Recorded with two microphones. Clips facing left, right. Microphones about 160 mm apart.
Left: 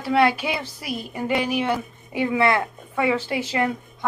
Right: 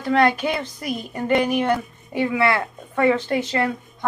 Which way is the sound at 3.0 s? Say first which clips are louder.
Right 4 dB; 10° left (ahead or behind).